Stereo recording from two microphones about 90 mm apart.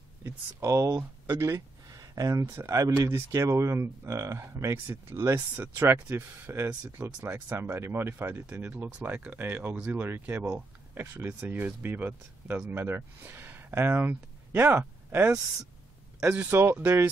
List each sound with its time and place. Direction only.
0.2 s speech: 30° right (ahead or behind)